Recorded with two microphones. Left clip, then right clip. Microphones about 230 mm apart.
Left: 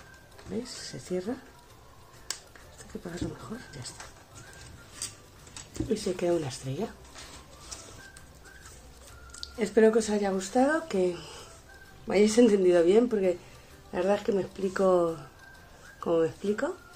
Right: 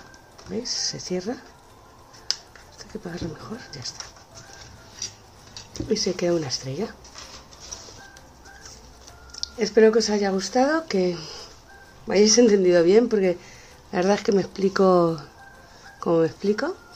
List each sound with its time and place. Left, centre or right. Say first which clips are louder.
0.5 s speech: right 10 dB; centre
3.0 s speech: right 3 dB; centre
5.9 s speech: right 5 dB; centre
9.4 s speech: right 6 dB; centre; by 16.7 s right